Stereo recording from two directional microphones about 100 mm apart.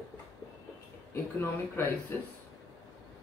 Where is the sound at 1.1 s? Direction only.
25° left (ahead or behind).